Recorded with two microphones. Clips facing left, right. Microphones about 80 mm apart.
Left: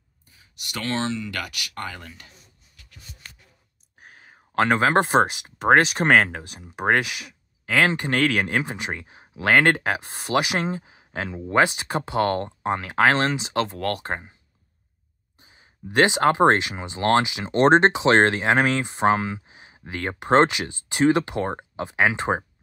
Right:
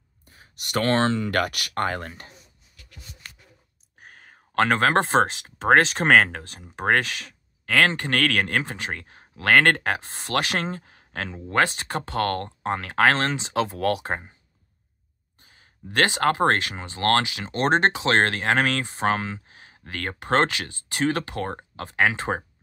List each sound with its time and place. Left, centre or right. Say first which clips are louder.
0.3 s speech: right 8 dB; right
4.0 s speech: even; centre
15.3 s speech: left 2 dB; centre